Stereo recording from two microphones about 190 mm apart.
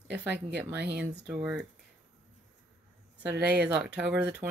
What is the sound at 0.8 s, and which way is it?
Speech, 60° right (ahead or behind).